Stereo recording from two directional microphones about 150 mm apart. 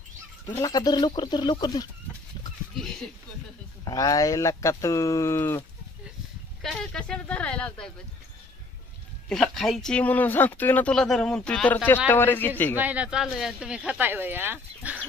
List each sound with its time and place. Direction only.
0.5 s speech: 25° left (ahead or behind)
3.8 s speech: 25° left (ahead or behind)
6.6 s speech: centre (ahead or behind)
9.3 s speech: 5° left (ahead or behind)
12.7 s speech: 10° right (ahead or behind)